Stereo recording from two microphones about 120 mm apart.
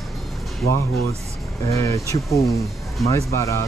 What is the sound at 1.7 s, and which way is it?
Speech, 25° left (ahead or behind).